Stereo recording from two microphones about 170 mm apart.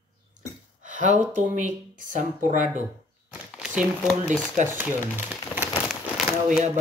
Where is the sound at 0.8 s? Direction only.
45° right (ahead or behind).